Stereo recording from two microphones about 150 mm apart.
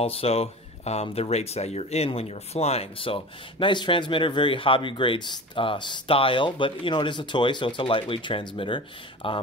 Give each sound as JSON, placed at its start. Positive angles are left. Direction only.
{"t": 0.0, "sound": "speech", "side_deg": 40}